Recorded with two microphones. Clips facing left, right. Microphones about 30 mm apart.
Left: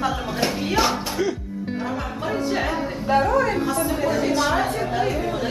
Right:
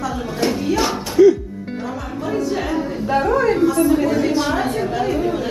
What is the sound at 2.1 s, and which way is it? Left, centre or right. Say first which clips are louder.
Music: right 5 dB; left.